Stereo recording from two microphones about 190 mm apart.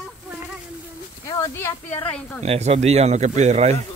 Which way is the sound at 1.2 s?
15° left (ahead or behind).